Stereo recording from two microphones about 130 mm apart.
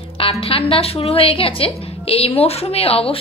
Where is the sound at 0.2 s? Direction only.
45° left (ahead or behind).